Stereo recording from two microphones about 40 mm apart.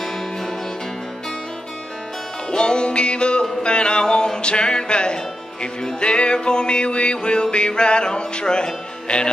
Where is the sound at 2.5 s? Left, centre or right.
Left.